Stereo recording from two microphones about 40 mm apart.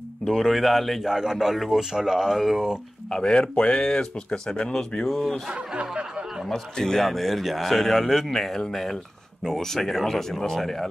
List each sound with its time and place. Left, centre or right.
0.3 s a man's voice: centre
1.0 s speech: centre
3.1 s speech: centre
3.5 s speech: left
5.0 s a man's voice: centre
5.5 s speech: right
5.9 s a sound: right
6.5 s a man's voice: centre